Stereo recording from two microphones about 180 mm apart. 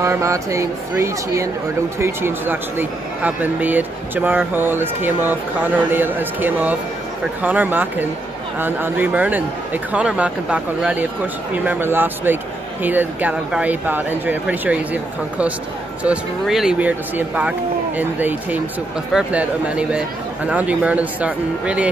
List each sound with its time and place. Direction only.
0.0 s speech: 15° right (ahead or behind)